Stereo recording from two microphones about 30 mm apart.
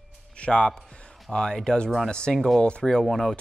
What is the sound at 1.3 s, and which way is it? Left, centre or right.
Speech, left.